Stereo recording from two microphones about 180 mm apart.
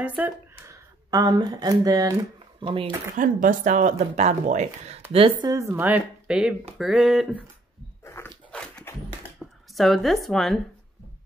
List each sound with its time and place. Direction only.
0.0 s speech: 10° right (ahead or behind)
1.1 s speech: 20° right (ahead or behind)
3.2 s speech: 45° right (ahead or behind)
5.1 s speech: 25° right (ahead or behind); by 7.4 s centre (ahead or behind)
8.0 s dog: 15° left (ahead or behind)
9.4 s a sound: 5° left (ahead or behind)
9.8 s speech: centre (ahead or behind)